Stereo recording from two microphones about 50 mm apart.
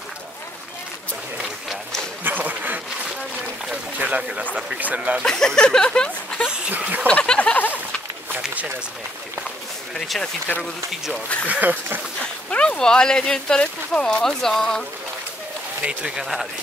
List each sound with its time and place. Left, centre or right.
2.2 s a sound: right
4.0 s speech: right
5.2 s speech: centre
6.8 s speech: right
7.1 s a sound: left
7.5 s a sound: left
10.0 s speech: centre
11.4 s speech: right
12.4 s speech: centre
15.8 s speech: right
16.2 s speech: centre